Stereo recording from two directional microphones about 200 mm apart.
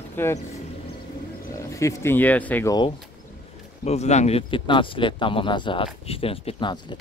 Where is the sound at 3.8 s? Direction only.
35° left (ahead or behind).